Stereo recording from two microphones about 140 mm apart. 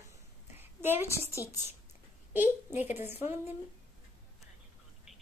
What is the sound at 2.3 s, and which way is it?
A woman's voice, 15° right (ahead or behind).